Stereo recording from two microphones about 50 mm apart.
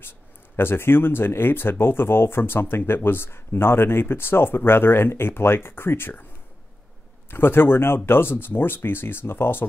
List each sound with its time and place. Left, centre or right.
0.6 s speech: left
7.2 s speech: left